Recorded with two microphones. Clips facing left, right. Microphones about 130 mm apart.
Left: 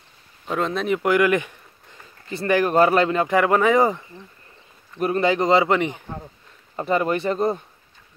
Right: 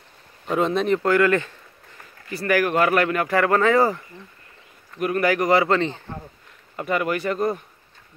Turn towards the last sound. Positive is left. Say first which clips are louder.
# left 2 dB
turn(degrees=25)  # may be behind; listen again after turning